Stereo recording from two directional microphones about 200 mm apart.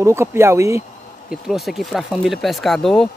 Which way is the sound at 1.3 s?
Centre (ahead or behind).